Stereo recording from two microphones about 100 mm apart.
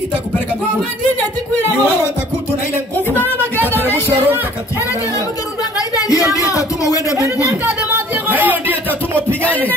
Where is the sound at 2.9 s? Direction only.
20° left (ahead or behind).